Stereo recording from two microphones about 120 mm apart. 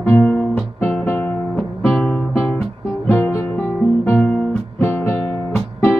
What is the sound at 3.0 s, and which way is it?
Music, 20° left (ahead or behind).